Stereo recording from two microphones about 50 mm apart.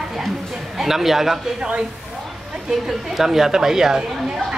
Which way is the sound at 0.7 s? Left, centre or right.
Centre.